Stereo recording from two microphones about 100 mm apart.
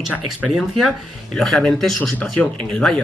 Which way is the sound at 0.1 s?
5° right (ahead or behind).